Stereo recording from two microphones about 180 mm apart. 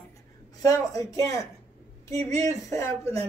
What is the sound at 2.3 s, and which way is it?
Speech, 35° right (ahead or behind).